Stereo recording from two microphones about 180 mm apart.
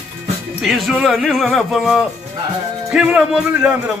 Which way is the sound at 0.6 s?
Centre (ahead or behind).